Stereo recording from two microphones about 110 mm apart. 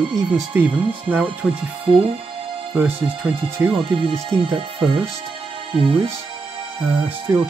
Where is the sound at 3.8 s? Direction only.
50° right (ahead or behind).